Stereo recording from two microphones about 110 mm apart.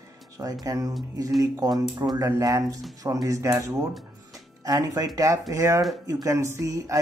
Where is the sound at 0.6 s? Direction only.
30° right (ahead or behind).